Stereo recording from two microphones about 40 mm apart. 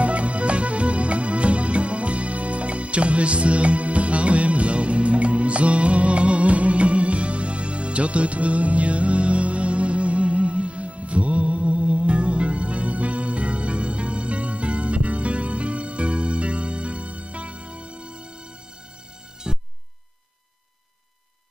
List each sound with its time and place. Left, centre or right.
0.0 s music: right
19.4 s music: centre